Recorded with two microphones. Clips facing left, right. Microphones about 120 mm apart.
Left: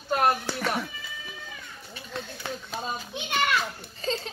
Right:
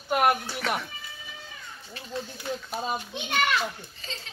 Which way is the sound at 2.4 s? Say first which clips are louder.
Right 3 dB; 90° left.